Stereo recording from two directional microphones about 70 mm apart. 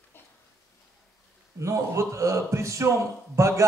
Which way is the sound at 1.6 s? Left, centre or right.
Right.